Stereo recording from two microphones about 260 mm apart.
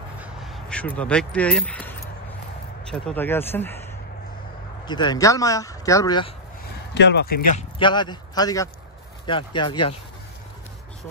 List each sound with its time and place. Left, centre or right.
0.2 s speech: centre
4.8 s speech: centre
6.9 s speech: left
7.5 s speech: centre